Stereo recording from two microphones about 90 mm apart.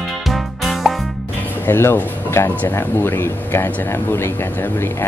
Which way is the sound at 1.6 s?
25° left (ahead or behind).